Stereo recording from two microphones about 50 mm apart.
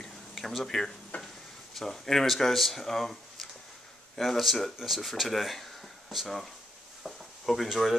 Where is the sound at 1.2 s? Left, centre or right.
Centre.